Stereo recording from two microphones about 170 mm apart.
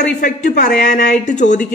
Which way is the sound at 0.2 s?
45° left (ahead or behind).